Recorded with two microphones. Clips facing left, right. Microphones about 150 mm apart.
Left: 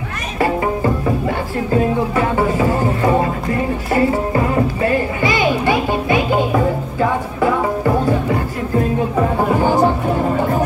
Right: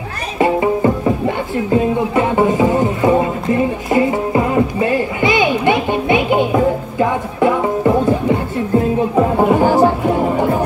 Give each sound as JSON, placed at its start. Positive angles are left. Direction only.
{"t": 1.7, "sound": "music", "side_deg": -20}